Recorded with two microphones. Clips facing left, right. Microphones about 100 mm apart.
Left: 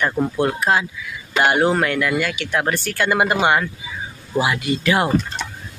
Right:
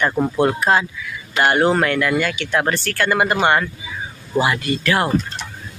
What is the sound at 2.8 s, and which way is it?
Speech, 15° left (ahead or behind).